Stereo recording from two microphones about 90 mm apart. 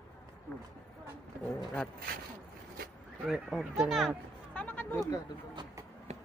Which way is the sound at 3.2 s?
5° right (ahead or behind).